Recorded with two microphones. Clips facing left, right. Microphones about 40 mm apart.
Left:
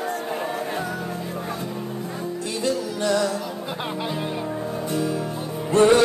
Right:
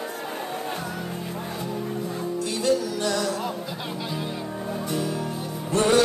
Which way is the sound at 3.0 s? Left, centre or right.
Left.